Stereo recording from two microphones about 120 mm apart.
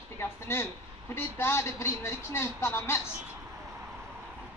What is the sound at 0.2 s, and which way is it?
A woman's voice, 20° left (ahead or behind).